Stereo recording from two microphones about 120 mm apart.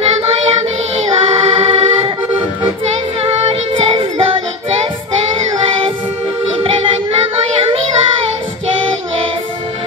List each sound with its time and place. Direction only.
0.0 s child singing: 55° right (ahead or behind)
1.0 s music: 50° right (ahead or behind)
2.8 s child singing: 50° right (ahead or behind)
5.5 s music: 50° right (ahead or behind)
6.6 s child singing: 50° right (ahead or behind)